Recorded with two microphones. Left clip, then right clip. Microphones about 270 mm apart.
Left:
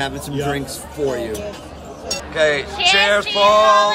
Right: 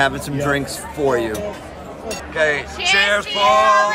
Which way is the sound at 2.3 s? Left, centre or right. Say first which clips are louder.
Left 1 dB; centre.